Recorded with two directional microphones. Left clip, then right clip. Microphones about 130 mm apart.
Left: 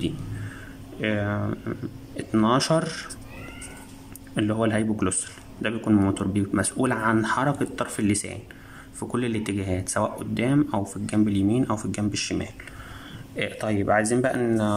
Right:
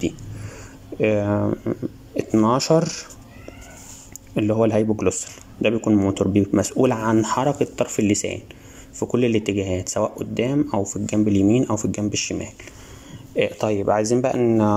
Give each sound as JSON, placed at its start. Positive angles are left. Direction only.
{"t": 1.0, "sound": "speech", "side_deg": -15}
{"t": 4.4, "sound": "speech", "side_deg": -15}